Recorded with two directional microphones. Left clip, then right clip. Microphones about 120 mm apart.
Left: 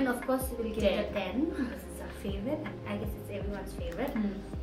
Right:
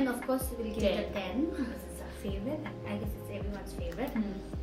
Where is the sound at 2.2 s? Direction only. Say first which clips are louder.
Left 2 dB; 10° left (ahead or behind).